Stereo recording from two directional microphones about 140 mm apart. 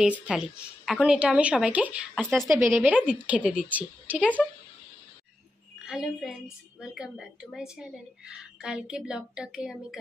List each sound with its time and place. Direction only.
0.0 s a woman's voice: 5° right (ahead or behind)
2.2 s a woman's voice: 5° left (ahead or behind)
2.7 s a woman's voice: 10° right (ahead or behind)
5.9 s a woman's voice: 5° right (ahead or behind)